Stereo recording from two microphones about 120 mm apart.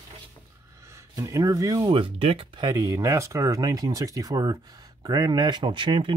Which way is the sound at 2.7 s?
30° right (ahead or behind).